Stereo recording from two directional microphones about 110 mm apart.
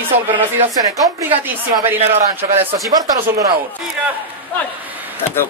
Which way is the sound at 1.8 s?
20° right (ahead or behind).